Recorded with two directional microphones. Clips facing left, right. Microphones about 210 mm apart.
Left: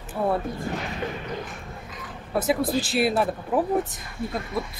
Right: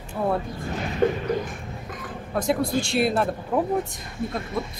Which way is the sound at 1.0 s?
50° right (ahead or behind).